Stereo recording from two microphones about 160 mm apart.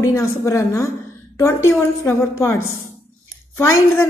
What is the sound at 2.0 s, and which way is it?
A woman's voice, 15° left (ahead or behind).